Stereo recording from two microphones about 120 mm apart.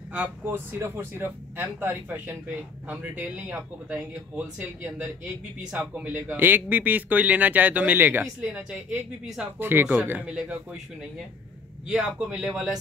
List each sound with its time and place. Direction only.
0.1 s speech: 15° right (ahead or behind)
11.9 s speech: 5° right (ahead or behind)